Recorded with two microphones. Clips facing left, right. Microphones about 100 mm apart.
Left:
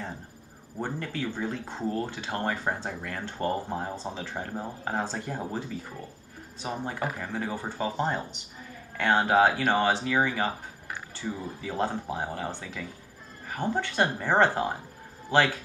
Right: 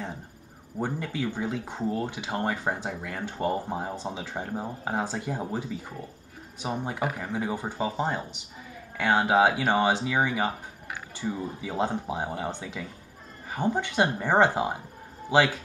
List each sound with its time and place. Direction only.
0.7 s speech: 15° right (ahead or behind)